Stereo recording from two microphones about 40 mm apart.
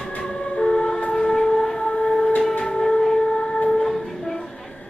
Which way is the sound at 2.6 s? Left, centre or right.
Centre.